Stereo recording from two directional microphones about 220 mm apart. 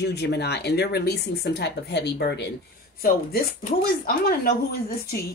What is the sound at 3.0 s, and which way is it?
Speech, 40° left (ahead or behind).